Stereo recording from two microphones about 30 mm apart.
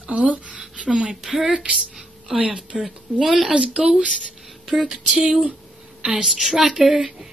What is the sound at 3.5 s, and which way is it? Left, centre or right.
Speech, right.